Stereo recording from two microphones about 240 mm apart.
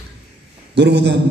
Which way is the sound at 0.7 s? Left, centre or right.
Right.